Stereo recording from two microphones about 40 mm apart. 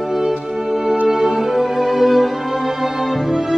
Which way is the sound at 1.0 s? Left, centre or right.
Centre.